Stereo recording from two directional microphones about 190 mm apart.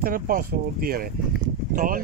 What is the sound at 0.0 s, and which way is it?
Speech, 50° right (ahead or behind).